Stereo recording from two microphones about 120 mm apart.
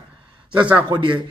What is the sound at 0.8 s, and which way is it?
Speech, 40° right (ahead or behind).